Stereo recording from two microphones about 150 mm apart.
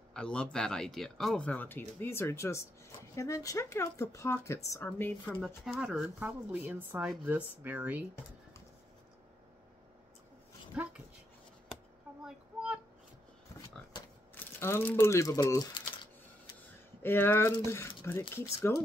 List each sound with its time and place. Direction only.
0.1 s speech: 5° left (ahead or behind)
5.7 s speech: 5° right (ahead or behind)
10.7 s dog: 10° right (ahead or behind)
14.3 s speech: 15° left (ahead or behind)
17.0 s speech: 15° left (ahead or behind)